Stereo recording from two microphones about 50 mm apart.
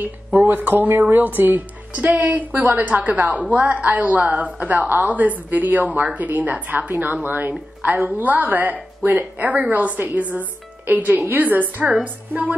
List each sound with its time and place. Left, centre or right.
0.0 s a woman's voice: right